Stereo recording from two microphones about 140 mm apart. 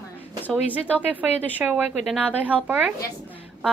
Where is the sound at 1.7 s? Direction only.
Centre (ahead or behind).